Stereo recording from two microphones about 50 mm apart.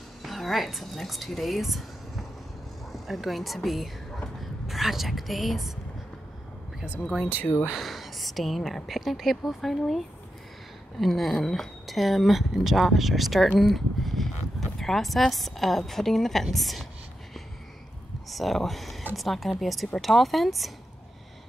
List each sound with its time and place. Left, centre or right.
0.2 s a woman's voice: centre
2.9 s a woman's voice: centre
4.4 s a sound: centre
7.7 s a woman's voice: centre
18.3 s a woman's voice: centre